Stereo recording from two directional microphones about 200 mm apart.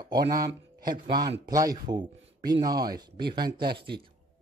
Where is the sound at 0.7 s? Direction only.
45° right (ahead or behind).